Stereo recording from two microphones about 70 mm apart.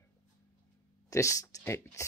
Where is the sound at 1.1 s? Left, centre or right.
Left.